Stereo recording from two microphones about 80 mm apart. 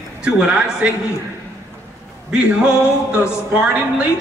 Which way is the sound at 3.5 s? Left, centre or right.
Centre.